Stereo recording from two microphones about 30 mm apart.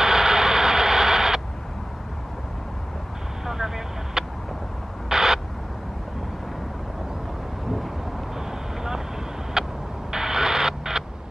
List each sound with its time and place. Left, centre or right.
0.0 s radio: centre
3.4 s vehicle: centre
5.1 s owl: centre
8.5 s vehicle: centre
10.1 s a sound: centre